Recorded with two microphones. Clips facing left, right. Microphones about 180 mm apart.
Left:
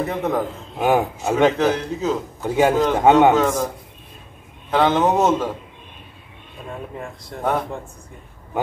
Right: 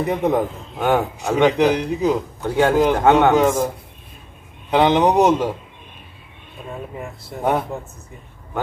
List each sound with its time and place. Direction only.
0.0 s a man's voice: 15° right (ahead or behind)
0.7 s speech: 5° left (ahead or behind)
1.3 s a man's voice: 15° right (ahead or behind)
2.4 s a man's voice: 10° left (ahead or behind)
3.3 s a man's voice: 20° right (ahead or behind)
4.6 s a man's voice: 15° right (ahead or behind)
6.7 s speech: 5° right (ahead or behind)